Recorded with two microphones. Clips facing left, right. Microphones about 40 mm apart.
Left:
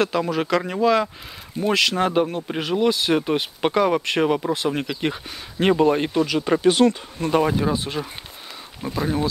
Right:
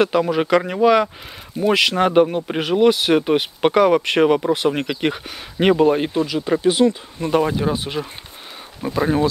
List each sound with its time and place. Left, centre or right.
0.3 s speech: centre
0.7 s speech: right
1.6 s speech: centre
6.7 s speech: centre
7.2 s speech: centre
8.8 s speech: right